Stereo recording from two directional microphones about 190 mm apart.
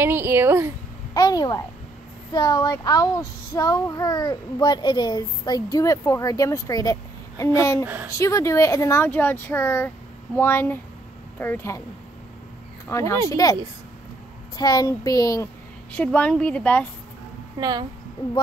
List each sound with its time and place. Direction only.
0.0 s speech: 10° right (ahead or behind)
1.1 s a child's voice: 20° left (ahead or behind)
7.8 s speech: 10° right (ahead or behind)
8.1 s speech: 15° left (ahead or behind)
12.8 s speech: 15° left (ahead or behind)
14.6 s a child's voice: 20° left (ahead or behind)
15.9 s speech: 5° left (ahead or behind)
17.6 s a woman's voice: 20° right (ahead or behind)